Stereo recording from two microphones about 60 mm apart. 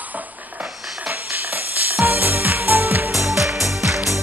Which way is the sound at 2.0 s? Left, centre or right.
Right.